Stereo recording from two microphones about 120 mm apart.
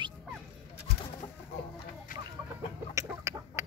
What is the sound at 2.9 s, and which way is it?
Chicken, 25° right (ahead or behind).